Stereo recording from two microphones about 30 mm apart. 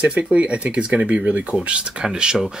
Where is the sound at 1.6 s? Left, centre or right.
Right.